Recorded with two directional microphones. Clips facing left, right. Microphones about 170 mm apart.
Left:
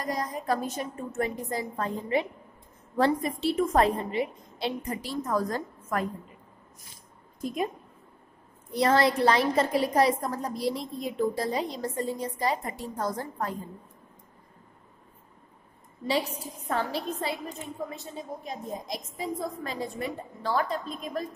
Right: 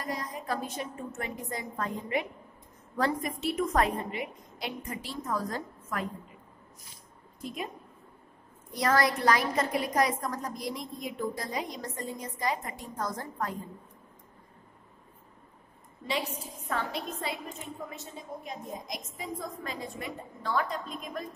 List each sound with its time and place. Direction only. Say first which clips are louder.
0.0 s a woman's voice: left 5 dB; 40° left (ahead or behind)
7.4 s a woman's voice: left 6 dB; 45° left (ahead or behind)
8.7 s a woman's voice: left 4 dB; 25° left (ahead or behind)
16.1 s a woman's voice: left 5 dB; 35° left (ahead or behind)